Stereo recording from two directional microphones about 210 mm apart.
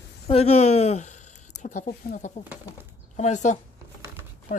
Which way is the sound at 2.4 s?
10° right (ahead or behind).